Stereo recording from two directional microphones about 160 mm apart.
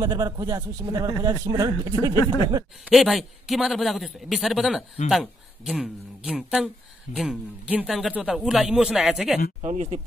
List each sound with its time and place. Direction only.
0.0 s speech: 25° right (ahead or behind)
2.8 s a man's voice: centre (ahead or behind)
9.6 s speech: 45° right (ahead or behind)